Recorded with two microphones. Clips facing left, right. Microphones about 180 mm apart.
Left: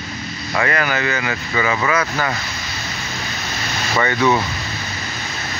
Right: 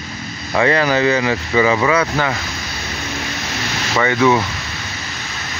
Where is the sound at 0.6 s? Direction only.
30° right (ahead or behind).